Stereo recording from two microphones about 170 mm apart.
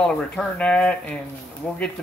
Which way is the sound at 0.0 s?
5° left (ahead or behind).